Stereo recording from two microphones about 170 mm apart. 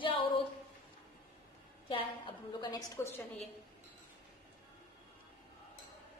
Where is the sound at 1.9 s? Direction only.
30° left (ahead or behind).